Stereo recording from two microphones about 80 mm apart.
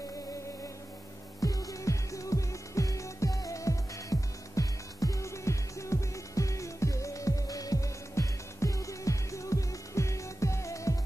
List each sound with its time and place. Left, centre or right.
1.4 s music: left